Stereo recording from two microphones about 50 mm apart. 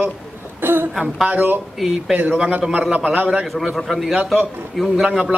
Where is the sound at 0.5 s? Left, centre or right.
Right.